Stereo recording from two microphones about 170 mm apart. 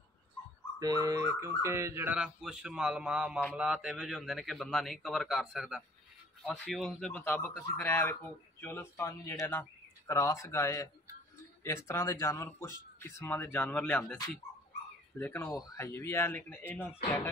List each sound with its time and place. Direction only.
0.7 s fowl: 20° right (ahead or behind)
2.1 s speech: 5° right (ahead or behind)
15.1 s speech: 10° left (ahead or behind)